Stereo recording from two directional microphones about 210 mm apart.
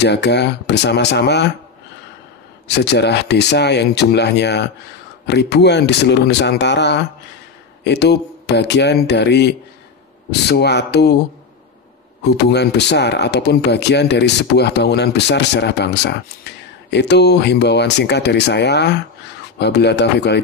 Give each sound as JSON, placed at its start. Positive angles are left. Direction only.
{"t": 0.0, "sound": "speech", "side_deg": 55}
{"t": 2.7, "sound": "speech", "side_deg": 55}
{"t": 12.4, "sound": "speech", "side_deg": 55}